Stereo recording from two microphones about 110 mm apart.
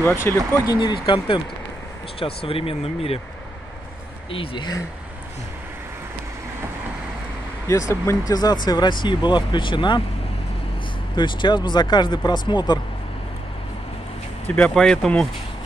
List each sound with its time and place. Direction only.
0.0 s speech: 25° left (ahead or behind)
0.7 s speech: 45° left (ahead or behind); by 3.2 s 60° left (ahead or behind)
4.3 s speech: 55° left (ahead or behind)
7.6 s speech: 25° left (ahead or behind); by 10.0 s 45° left (ahead or behind)
11.1 s speech: 45° left (ahead or behind)
14.5 s speech: 10° left (ahead or behind)